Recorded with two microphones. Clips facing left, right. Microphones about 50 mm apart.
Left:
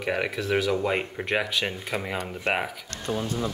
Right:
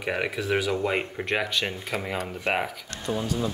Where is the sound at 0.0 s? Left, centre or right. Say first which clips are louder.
Left 1 dB; centre.